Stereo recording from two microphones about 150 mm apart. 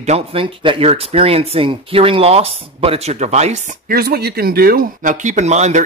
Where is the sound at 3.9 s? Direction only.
90° right; by 5.8 s 50° right (ahead or behind).